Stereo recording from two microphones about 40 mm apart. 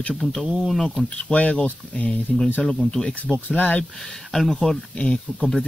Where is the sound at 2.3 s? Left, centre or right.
Centre.